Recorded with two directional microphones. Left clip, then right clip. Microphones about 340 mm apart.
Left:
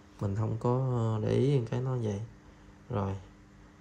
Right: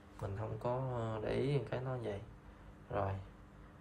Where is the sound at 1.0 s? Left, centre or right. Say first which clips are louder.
Left 7 dB; left.